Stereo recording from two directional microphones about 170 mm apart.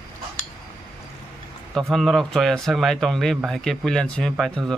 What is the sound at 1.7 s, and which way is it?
Speech, centre (ahead or behind).